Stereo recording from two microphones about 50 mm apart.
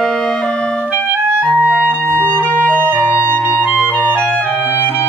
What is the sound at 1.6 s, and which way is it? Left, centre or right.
Clarinet, right.